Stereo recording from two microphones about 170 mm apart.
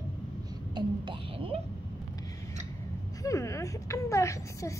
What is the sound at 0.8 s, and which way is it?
Speech, 30° right (ahead or behind).